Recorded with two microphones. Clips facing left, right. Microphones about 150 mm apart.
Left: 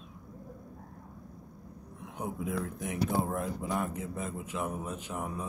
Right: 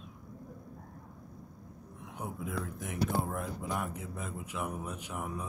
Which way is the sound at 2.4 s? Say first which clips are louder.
Left 4 dB; centre (ahead or behind).